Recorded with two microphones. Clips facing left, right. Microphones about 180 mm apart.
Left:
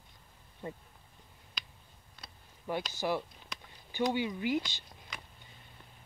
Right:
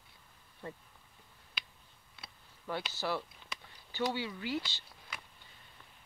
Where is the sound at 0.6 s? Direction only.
20° left (ahead or behind).